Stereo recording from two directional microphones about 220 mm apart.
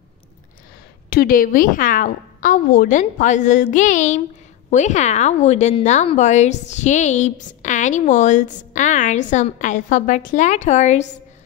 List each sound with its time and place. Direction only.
1.1 s a woman's voice: 40° left (ahead or behind)